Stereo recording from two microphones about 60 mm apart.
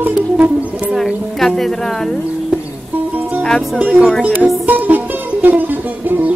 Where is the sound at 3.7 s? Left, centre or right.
Right.